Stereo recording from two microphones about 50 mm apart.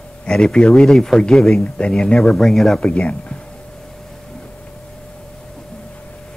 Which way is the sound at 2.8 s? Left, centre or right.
Left.